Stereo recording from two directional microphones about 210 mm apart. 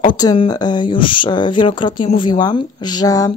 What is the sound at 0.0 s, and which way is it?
Speech, 20° left (ahead or behind).